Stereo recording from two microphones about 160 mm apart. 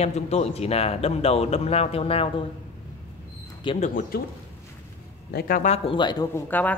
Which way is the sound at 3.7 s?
50° left (ahead or behind).